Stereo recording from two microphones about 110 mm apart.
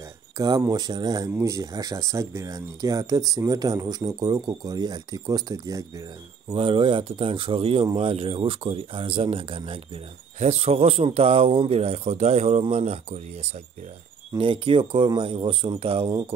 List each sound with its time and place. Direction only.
0.4 s speech: 35° right (ahead or behind)
6.5 s speech: 50° right (ahead or behind)
10.4 s speech: 70° right (ahead or behind)
14.3 s speech: 50° right (ahead or behind)